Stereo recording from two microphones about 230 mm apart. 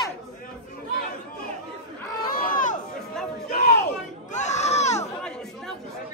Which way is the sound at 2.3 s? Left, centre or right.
Left.